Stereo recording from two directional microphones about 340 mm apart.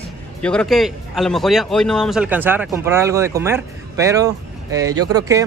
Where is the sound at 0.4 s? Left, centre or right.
Centre.